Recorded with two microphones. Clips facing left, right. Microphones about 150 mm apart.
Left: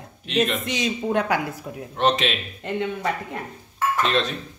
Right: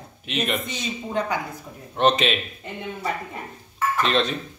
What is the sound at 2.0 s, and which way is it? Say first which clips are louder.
Speech: right 2 dB; centre (ahead or behind).